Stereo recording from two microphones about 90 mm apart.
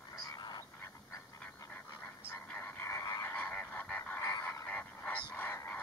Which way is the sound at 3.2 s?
20° left (ahead or behind).